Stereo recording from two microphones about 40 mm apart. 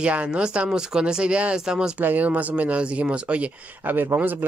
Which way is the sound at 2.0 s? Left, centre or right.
Right.